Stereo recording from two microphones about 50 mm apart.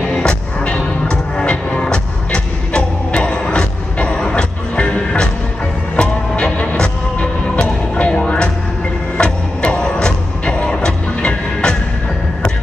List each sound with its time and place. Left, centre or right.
0.1 s music: centre
5.9 s vehicle: left
6.8 s music: centre